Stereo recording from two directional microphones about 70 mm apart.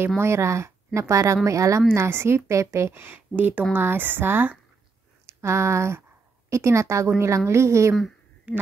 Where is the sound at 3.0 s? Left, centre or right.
Right.